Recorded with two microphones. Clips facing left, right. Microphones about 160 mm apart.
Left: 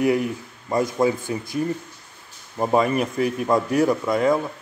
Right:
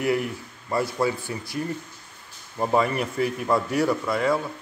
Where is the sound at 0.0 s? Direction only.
20° left (ahead or behind).